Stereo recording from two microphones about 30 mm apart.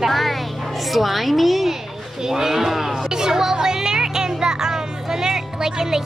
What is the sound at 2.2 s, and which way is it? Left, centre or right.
Speech, centre.